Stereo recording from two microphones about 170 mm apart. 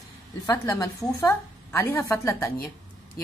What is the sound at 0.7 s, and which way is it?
A woman's voice, 15° left (ahead or behind).